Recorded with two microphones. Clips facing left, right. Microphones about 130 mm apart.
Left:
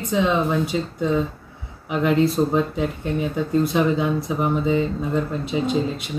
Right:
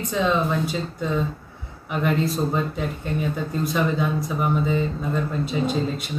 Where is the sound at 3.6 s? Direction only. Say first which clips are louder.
Left 1 dB; 20° left (ahead or behind).